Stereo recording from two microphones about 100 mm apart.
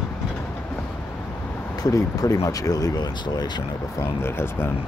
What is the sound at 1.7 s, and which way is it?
Speech, 40° left (ahead or behind).